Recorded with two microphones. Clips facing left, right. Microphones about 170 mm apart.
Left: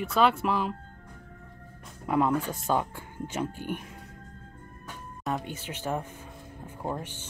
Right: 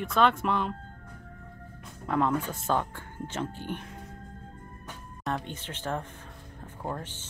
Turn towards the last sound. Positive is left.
turn(degrees=10)  # may be behind; listen again after turning